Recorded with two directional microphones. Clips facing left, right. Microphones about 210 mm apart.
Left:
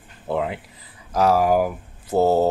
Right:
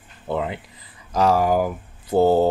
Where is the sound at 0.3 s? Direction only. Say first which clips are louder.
Left 1 dB; 5° left (ahead or behind).